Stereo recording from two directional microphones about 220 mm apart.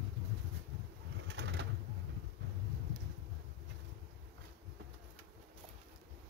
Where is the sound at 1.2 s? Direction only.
55° right (ahead or behind).